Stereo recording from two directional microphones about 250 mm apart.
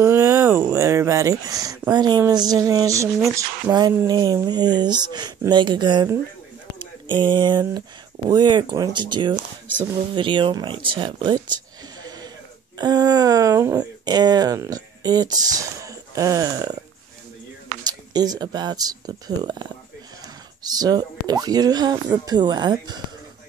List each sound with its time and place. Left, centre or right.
0.0 s speech: centre
12.7 s speech: centre
17.8 s speech: centre